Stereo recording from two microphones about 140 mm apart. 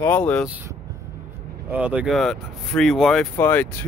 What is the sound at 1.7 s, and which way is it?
Speech, 10° right (ahead or behind).